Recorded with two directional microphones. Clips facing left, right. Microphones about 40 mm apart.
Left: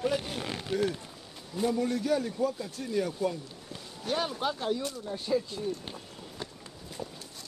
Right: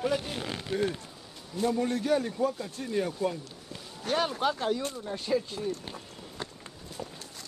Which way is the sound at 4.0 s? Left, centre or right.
Right.